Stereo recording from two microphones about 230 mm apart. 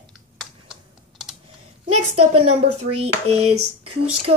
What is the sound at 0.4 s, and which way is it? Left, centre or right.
Computer keyboard, centre.